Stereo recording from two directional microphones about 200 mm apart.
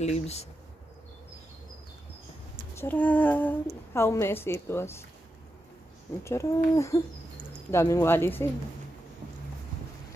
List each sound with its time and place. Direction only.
0.0 s speech: 30° left (ahead or behind)
2.7 s a woman's voice: 10° left (ahead or behind)
6.2 s a woman's voice: 15° left (ahead or behind)